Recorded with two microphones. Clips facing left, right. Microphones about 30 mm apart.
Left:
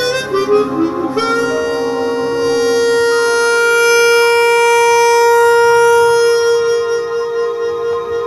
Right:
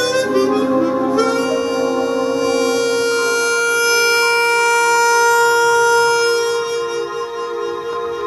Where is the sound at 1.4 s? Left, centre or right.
Centre.